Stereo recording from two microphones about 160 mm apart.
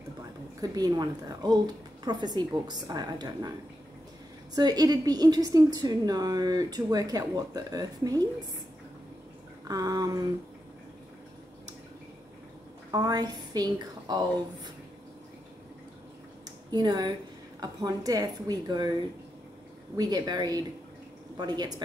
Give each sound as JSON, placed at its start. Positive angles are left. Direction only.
{"t": 0.6, "sound": "a woman's voice", "side_deg": -25}
{"t": 4.6, "sound": "a woman's voice", "side_deg": -25}
{"t": 9.7, "sound": "a woman's voice", "side_deg": -25}
{"t": 12.9, "sound": "a woman's voice", "side_deg": -25}
{"t": 16.7, "sound": "a woman's voice", "side_deg": -25}
{"t": 20.0, "sound": "a woman's voice", "side_deg": -25}